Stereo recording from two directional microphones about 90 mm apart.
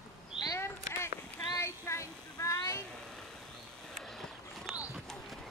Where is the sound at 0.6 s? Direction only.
30° left (ahead or behind).